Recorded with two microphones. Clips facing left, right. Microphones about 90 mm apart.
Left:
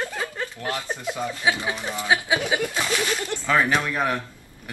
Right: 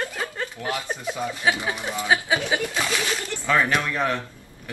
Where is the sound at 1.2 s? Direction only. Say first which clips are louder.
Even; 10° right (ahead or behind).